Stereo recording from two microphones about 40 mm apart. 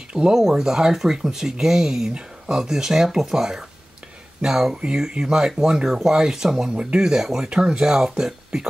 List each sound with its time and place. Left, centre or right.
0.1 s speech: centre
6.7 s speech: right